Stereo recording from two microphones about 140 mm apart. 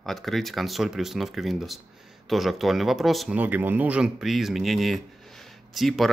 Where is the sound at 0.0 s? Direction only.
Centre (ahead or behind).